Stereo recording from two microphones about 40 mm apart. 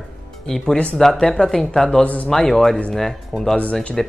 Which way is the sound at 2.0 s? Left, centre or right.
Left.